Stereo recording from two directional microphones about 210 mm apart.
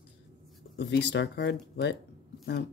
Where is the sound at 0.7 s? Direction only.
55° left (ahead or behind).